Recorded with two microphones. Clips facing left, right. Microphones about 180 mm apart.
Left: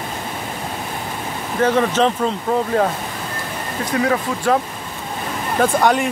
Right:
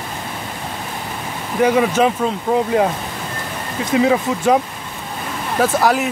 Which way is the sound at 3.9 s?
20° right (ahead or behind).